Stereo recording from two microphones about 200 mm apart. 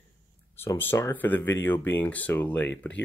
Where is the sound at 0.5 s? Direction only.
10° left (ahead or behind).